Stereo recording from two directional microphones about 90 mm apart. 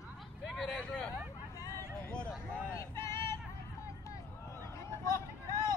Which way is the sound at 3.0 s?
30° left (ahead or behind).